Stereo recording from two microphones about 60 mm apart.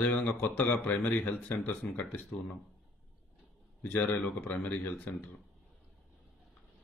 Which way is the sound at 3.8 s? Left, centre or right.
Left.